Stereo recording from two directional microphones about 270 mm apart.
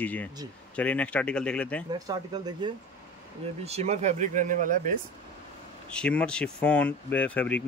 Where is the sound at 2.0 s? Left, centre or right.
Centre.